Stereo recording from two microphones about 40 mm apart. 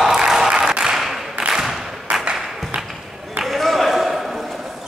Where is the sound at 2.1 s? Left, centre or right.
Right.